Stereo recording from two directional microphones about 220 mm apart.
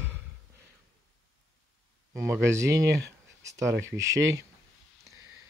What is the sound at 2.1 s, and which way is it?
Speech, 10° right (ahead or behind).